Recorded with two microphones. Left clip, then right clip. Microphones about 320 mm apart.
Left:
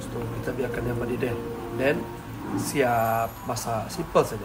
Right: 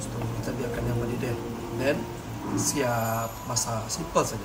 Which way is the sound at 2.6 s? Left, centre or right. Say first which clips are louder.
Left 4 dB; centre.